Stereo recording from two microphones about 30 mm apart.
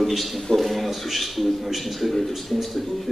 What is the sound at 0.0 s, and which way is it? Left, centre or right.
A man's voice, centre.